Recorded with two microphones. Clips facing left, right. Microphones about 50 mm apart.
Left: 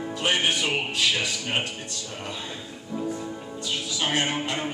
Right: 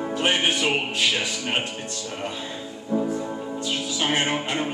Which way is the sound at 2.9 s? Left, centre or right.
Right.